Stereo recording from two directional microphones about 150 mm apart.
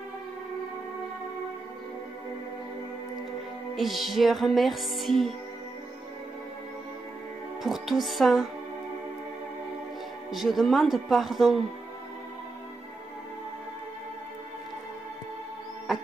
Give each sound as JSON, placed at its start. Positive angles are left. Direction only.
{"t": 3.7, "sound": "music", "side_deg": 0}
{"t": 7.6, "sound": "speech", "side_deg": 0}
{"t": 10.3, "sound": "music", "side_deg": 0}
{"t": 15.9, "sound": "music", "side_deg": 0}